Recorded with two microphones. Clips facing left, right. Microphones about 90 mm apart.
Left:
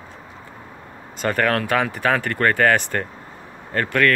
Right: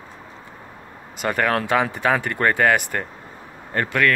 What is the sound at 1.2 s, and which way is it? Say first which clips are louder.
Speech: left 1 dB; 15° right (ahead or behind).